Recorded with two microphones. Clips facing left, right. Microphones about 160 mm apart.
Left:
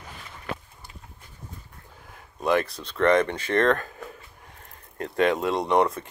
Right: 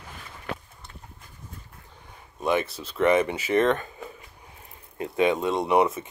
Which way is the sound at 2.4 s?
Centre (ahead or behind).